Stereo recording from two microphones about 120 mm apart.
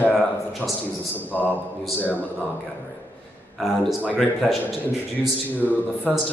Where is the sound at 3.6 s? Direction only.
Centre (ahead or behind).